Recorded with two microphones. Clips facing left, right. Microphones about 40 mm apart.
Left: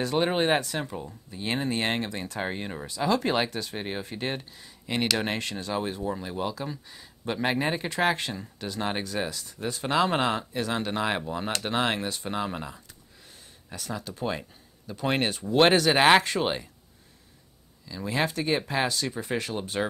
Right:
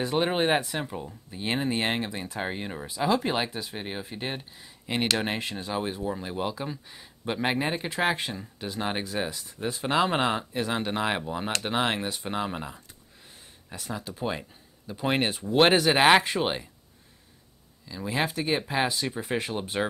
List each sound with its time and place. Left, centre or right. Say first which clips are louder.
0.2 s speech: even; centre
3.7 s speech: left 2 dB; centre
7.3 s speech: left 1 dB; centre
17.8 s speech: left 1 dB; centre